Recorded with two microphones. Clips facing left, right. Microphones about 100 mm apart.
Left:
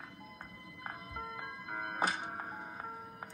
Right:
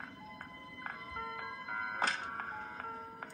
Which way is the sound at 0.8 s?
10° left (ahead or behind).